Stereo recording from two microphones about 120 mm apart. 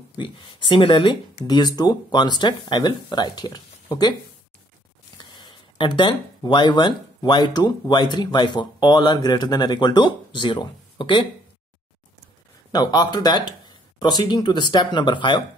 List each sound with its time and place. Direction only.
0.2 s speech: 40° left (ahead or behind)
1.4 s speech: 35° left (ahead or behind)
5.1 s speech: 40° left (ahead or behind)
12.7 s speech: 35° left (ahead or behind)